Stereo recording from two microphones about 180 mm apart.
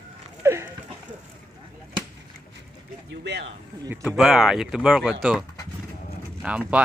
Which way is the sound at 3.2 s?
70° right (ahead or behind).